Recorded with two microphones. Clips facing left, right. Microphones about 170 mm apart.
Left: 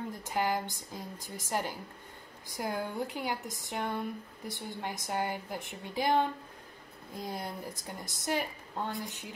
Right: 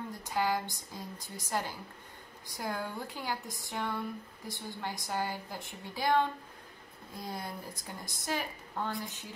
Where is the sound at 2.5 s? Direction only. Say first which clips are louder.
Left 3 dB; 20° left (ahead or behind).